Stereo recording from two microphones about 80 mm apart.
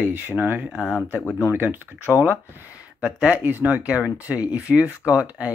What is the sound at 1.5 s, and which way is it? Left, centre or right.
Speech, right.